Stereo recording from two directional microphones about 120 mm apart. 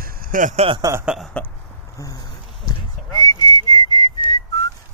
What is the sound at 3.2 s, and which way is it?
Whistling, 35° left (ahead or behind).